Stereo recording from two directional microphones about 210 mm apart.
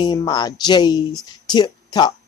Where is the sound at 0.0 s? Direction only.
20° left (ahead or behind).